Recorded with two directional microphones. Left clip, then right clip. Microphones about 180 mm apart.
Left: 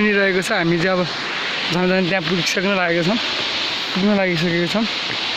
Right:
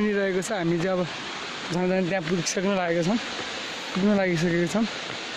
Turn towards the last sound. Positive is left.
turn(degrees=-30)  # may be behind; listen again after turning